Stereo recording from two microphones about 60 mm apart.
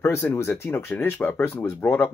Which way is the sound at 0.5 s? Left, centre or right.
Left.